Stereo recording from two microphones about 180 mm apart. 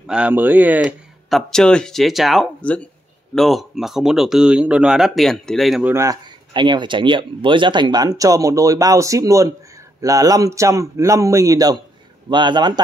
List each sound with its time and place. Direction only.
0.0 s speech: 5° right (ahead or behind); by 12.8 s 25° right (ahead or behind)